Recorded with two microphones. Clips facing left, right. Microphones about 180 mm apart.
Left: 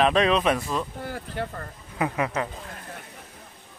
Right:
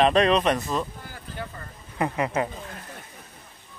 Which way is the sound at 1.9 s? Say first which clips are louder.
Even; centre (ahead or behind).